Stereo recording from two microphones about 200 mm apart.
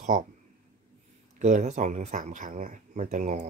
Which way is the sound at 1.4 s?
35° right (ahead or behind).